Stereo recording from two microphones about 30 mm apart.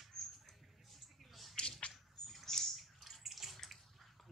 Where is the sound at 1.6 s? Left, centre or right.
Left.